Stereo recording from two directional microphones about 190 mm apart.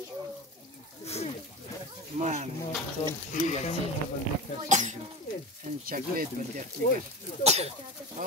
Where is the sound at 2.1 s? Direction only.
40° right (ahead or behind).